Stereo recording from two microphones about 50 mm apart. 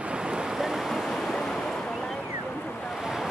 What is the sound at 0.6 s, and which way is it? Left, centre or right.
Waves, centre.